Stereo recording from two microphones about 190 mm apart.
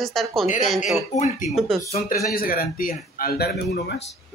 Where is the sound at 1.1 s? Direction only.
35° left (ahead or behind).